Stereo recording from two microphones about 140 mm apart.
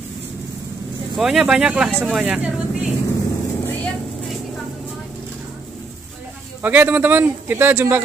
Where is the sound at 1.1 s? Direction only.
5° right (ahead or behind).